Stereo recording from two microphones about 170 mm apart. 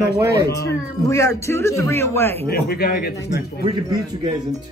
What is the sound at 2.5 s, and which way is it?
Speech, 65° left (ahead or behind).